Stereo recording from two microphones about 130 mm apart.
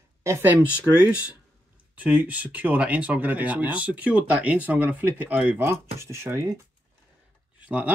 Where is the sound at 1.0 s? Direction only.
10° right (ahead or behind).